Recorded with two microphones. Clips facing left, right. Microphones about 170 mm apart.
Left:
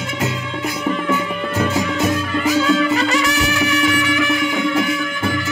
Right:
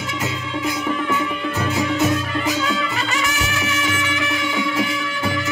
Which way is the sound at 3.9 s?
30° right (ahead or behind).